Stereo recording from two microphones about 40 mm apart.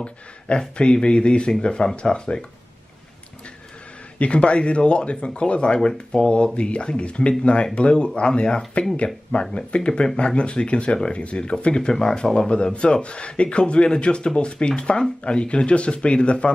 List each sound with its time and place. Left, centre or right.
0.6 s speech: left
4.2 s speech: left